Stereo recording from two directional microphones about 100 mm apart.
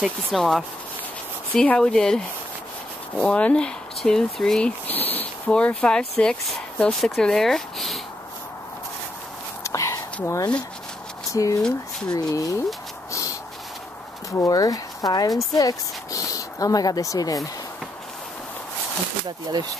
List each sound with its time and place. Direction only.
0.0 s speech: centre (ahead or behind)
9.6 s a sound: 30° left (ahead or behind)
11.3 s speech: 35° left (ahead or behind)
14.3 s speech: 35° left (ahead or behind)